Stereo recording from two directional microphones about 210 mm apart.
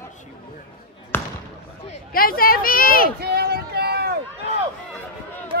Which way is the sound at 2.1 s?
45° left (ahead or behind).